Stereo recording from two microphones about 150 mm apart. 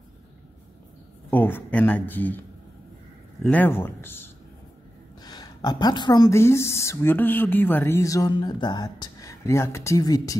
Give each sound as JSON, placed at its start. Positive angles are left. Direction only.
{"t": 1.3, "sound": "speech", "side_deg": 10}
{"t": 3.4, "sound": "speech", "side_deg": 10}
{"t": 5.2, "sound": "a sound", "side_deg": 25}
{"t": 6.3, "sound": "speech", "side_deg": 15}